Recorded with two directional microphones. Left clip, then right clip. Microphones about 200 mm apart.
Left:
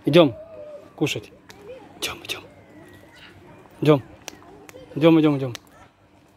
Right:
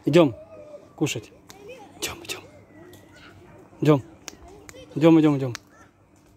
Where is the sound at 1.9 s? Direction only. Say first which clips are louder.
Left 3 dB; 20° right (ahead or behind).